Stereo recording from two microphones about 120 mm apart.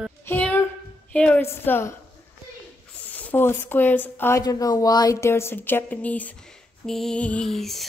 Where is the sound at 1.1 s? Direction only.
10° left (ahead or behind).